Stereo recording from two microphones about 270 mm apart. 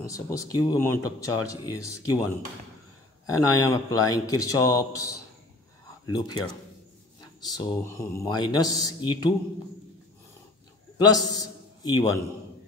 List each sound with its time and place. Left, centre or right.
0.0 s speech: centre
3.3 s speech: centre
6.0 s speech: centre
11.0 s a man's voice: centre